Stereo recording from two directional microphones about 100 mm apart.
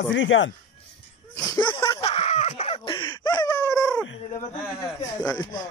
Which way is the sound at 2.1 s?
90° left.